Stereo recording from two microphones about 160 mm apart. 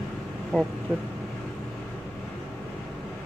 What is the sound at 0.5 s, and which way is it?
Speech, centre (ahead or behind).